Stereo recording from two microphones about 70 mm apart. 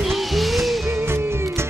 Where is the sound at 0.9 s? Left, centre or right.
Right.